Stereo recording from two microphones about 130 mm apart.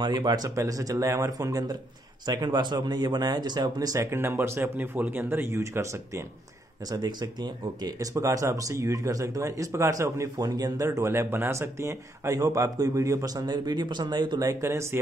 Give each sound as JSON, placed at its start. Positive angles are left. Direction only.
{"t": 0.0, "sound": "speech", "side_deg": -35}
{"t": 6.9, "sound": "speech", "side_deg": -35}